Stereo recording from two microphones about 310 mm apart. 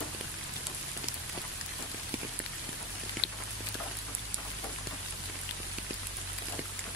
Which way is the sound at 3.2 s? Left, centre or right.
Left.